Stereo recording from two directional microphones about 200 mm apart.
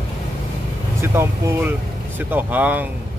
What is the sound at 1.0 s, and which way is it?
Speech, 15° right (ahead or behind).